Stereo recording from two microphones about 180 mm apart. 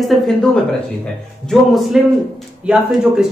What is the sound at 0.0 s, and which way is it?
A man's voice, centre (ahead or behind).